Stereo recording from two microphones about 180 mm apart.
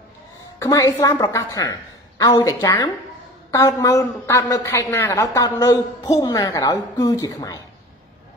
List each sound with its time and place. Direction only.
0.6 s a woman's voice: 20° left (ahead or behind)